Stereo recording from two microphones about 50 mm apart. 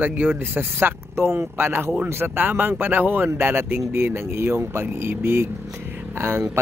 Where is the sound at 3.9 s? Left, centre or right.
Right.